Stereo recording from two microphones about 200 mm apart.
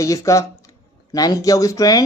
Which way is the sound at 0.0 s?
15° left (ahead or behind).